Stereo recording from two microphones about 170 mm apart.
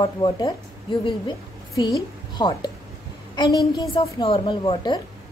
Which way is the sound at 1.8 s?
25° left (ahead or behind).